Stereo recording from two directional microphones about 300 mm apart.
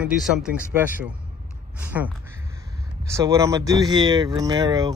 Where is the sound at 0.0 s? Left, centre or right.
Centre.